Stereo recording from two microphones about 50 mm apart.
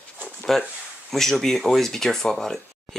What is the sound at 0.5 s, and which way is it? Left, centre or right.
Speech, centre.